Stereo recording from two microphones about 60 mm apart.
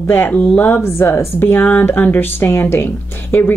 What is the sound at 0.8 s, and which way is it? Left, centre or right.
Speech, left.